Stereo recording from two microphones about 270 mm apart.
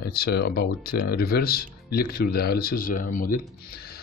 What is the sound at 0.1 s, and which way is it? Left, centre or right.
Speech, left.